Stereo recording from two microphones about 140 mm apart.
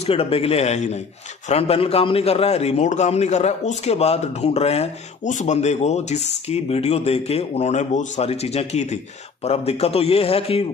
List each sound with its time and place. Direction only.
0.0 s a man's voice: 45° left (ahead or behind)